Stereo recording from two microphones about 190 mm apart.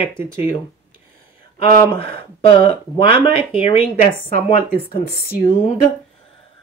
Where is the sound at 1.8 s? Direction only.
25° left (ahead or behind).